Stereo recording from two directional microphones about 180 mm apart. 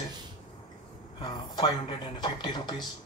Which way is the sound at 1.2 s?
25° left (ahead or behind).